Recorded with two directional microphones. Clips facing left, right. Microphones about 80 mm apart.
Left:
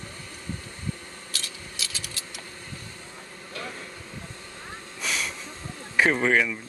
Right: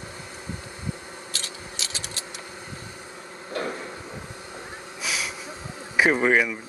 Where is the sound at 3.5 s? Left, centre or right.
Right.